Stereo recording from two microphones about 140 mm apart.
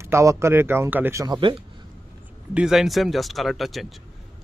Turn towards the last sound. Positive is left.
turn(degrees=0)  # may be behind; listen again after turning